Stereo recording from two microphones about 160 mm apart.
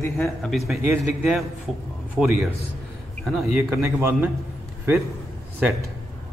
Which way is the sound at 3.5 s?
15° right (ahead or behind).